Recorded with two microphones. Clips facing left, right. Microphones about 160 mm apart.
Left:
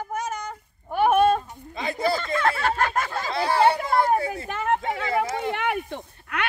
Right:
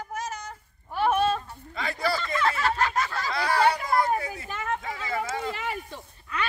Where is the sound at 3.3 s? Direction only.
25° left (ahead or behind).